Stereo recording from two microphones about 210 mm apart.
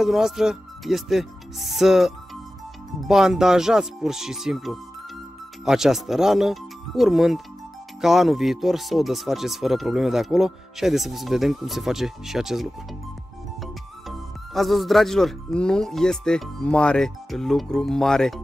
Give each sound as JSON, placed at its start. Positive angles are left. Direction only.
{"t": 0.0, "sound": "speech", "side_deg": 0}